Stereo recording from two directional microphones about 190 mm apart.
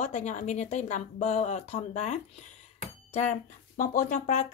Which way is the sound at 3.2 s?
40° left (ahead or behind).